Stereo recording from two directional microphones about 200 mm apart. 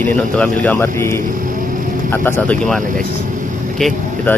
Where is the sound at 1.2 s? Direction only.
40° right (ahead or behind).